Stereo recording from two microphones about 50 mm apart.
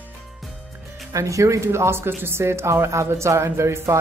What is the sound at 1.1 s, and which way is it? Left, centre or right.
Speech, right.